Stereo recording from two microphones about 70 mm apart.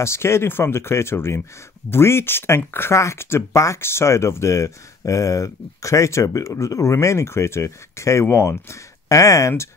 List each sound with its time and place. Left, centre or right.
0.0 s speech: left